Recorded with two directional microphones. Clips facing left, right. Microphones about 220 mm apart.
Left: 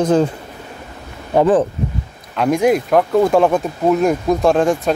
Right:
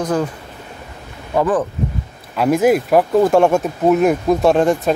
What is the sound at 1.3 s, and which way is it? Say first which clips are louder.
Speech: left 4 dB; 25° left (ahead or behind).